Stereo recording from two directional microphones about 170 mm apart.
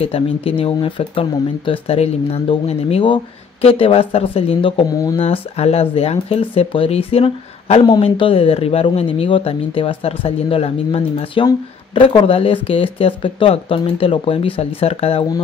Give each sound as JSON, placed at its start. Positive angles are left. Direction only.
{"t": 0.0, "sound": "speech", "side_deg": 35}
{"t": 5.2, "sound": "speech", "side_deg": 35}